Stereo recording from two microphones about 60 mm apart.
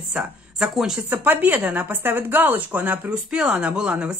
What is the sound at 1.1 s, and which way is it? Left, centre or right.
Speech, right.